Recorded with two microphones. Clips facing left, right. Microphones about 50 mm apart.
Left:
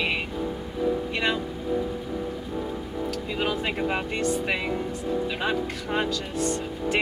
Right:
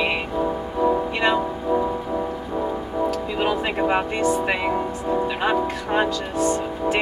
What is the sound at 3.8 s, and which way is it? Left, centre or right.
Music, centre.